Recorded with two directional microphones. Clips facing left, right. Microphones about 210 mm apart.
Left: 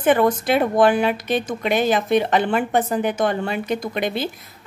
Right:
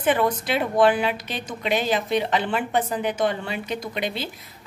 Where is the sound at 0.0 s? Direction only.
50° left (ahead or behind).